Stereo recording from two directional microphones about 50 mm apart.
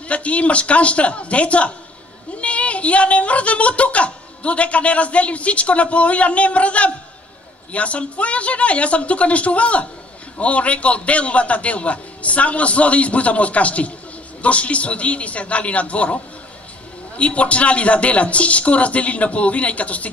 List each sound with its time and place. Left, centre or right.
0.1 s speech: left
17.2 s speech: left